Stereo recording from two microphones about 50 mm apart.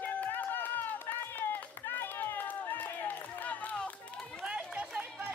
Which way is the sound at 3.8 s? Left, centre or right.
Centre.